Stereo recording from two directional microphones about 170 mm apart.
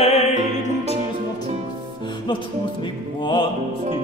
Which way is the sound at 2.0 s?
25° left (ahead or behind).